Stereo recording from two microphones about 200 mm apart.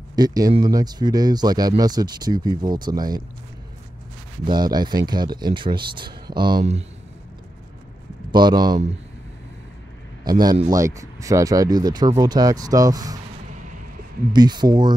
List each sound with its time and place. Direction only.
0.1 s speech: 20° right (ahead or behind)
4.5 s speech: 20° right (ahead or behind)
8.3 s speech: 20° right (ahead or behind)
10.2 s speech: 20° right (ahead or behind)
14.3 s speech: 20° right (ahead or behind)